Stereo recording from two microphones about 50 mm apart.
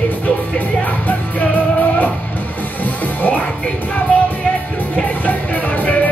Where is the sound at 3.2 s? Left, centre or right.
Left.